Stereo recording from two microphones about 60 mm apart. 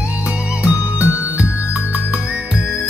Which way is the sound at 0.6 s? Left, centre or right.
Right.